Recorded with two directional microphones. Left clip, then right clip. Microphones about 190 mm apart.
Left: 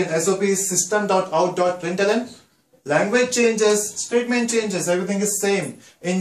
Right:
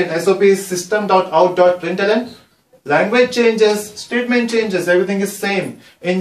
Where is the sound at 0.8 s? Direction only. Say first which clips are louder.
Right 6 dB; 10° left (ahead or behind).